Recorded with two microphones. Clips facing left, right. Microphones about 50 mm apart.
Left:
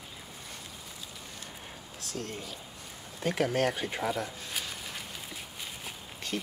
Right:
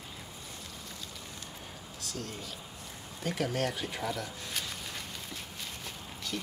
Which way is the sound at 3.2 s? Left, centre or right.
Left.